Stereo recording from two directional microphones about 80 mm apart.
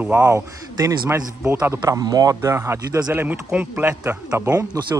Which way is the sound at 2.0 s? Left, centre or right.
Right.